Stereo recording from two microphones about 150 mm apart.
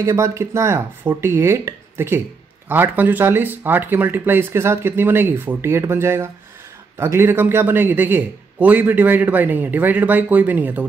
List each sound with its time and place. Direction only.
0.0 s a man's voice: 20° right (ahead or behind)